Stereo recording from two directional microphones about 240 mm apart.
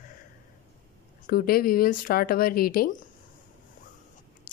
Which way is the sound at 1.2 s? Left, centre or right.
Left.